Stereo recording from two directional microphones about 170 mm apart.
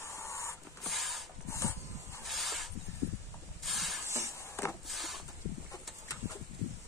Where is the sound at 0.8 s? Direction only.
Centre (ahead or behind).